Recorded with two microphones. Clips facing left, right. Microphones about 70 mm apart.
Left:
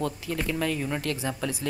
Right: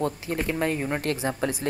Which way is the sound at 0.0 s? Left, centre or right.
Right.